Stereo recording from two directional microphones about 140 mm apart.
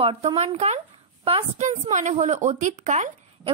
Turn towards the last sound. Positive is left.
turn(degrees=-60)  # may be behind; listen again after turning